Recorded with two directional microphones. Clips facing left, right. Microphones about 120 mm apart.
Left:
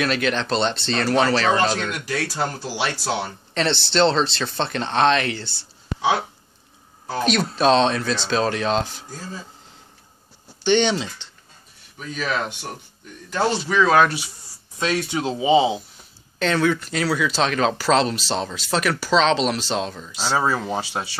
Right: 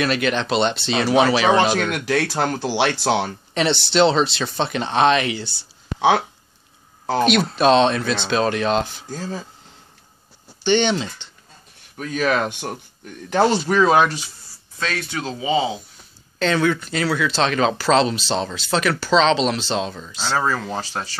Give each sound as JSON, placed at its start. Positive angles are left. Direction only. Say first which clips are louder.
{"t": 0.0, "sound": "speech", "louder": "right 2 dB", "side_deg": -5}
{"t": 1.8, "sound": "speech", "louder": "right 5 dB", "side_deg": -70}
{"t": 3.5, "sound": "speech", "louder": "right 2 dB", "side_deg": -5}
{"t": 5.9, "sound": "speech", "louder": "right 4 dB", "side_deg": -75}
{"t": 7.2, "sound": "speech", "louder": "right 1 dB", "side_deg": 0}
{"t": 9.1, "sound": "speech", "louder": "right 6 dB", "side_deg": -90}
{"t": 10.6, "sound": "speech", "louder": "even", "side_deg": 0}
{"t": 12.0, "sound": "speech", "louder": "right 5 dB", "side_deg": -55}
{"t": 14.0, "sound": "speech", "louder": "even", "side_deg": 10}
{"t": 16.3, "sound": "speech", "louder": "right 1 dB", "side_deg": 0}